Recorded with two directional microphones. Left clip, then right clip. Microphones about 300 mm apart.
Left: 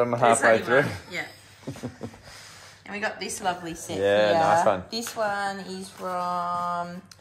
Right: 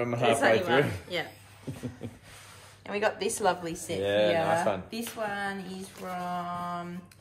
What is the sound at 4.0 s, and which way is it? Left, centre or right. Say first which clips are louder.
Speech: left 5 dB; left.